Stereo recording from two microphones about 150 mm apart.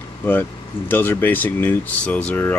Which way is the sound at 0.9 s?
15° left (ahead or behind).